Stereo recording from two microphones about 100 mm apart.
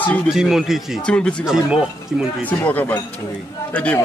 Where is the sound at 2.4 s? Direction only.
15° left (ahead or behind).